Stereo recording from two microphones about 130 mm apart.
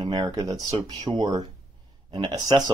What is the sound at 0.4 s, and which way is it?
Speech, 30° right (ahead or behind).